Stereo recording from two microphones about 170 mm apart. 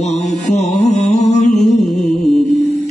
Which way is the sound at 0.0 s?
45° left (ahead or behind).